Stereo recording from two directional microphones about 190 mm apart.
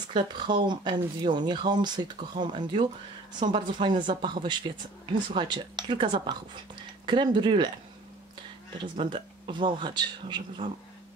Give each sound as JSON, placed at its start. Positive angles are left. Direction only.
{"t": 0.1, "sound": "a woman's voice", "side_deg": -25}